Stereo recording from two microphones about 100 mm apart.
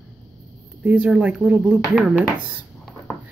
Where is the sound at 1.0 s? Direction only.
10° right (ahead or behind).